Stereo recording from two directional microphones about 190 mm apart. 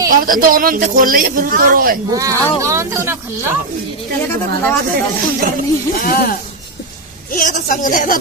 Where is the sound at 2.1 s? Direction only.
15° right (ahead or behind).